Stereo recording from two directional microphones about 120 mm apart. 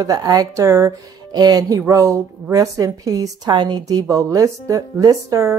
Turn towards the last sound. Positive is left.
turn(degrees=-25)  # may be behind; listen again after turning